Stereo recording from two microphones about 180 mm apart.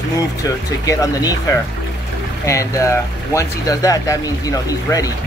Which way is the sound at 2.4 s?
15° left (ahead or behind).